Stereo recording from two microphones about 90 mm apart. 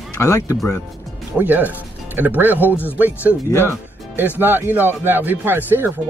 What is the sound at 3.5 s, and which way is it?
Speech, 30° left (ahead or behind).